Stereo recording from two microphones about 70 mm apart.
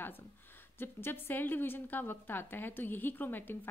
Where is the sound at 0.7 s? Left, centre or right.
Left.